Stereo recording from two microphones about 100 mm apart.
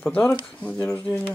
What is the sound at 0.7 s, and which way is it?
Speech, 30° left (ahead or behind).